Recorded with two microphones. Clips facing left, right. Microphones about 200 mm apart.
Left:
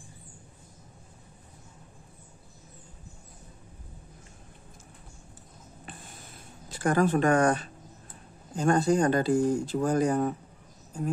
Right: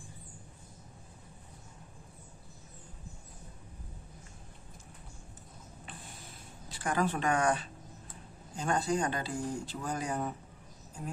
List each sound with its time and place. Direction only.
6.7 s speech: 45° left (ahead or behind)